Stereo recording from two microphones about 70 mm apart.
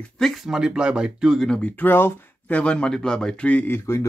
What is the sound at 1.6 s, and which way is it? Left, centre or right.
Speech, left.